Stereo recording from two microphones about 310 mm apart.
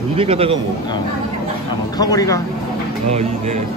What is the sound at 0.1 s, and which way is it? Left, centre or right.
Speech, centre.